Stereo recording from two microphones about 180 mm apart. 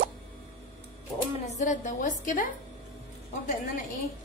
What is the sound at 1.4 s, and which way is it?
A woman's voice, 40° left (ahead or behind).